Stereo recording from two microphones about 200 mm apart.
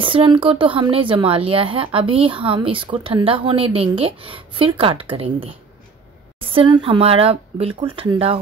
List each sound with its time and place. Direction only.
0.0 s a woman's voice: 25° right (ahead or behind)